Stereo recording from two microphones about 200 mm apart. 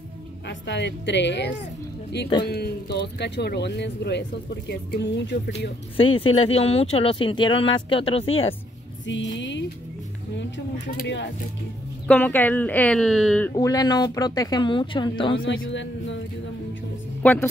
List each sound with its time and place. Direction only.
0.5 s speech: 60° left (ahead or behind)
6.1 s speech: 30° left (ahead or behind)
9.0 s speech: 65° left (ahead or behind)
12.1 s speech: 10° left (ahead or behind)
13.6 s speech: 20° left (ahead or behind)
15.4 s a man's voice: 70° left (ahead or behind)
17.2 s a woman's voice: 10° left (ahead or behind)